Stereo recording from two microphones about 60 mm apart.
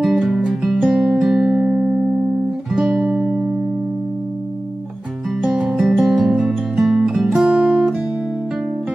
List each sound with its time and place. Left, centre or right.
0.0 s music: centre
2.7 s music: centre
5.4 s music: centre
7.3 s music: centre